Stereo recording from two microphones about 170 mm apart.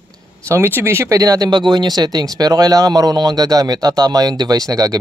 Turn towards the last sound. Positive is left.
turn(degrees=-20)  # may be behind; listen again after turning